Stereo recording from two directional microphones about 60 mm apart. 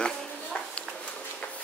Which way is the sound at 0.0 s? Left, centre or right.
Centre.